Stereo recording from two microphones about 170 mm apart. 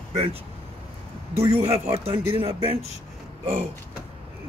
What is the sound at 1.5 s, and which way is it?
Speech, 35° right (ahead or behind).